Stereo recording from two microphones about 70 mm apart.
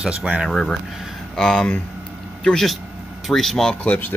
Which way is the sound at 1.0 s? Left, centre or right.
Centre.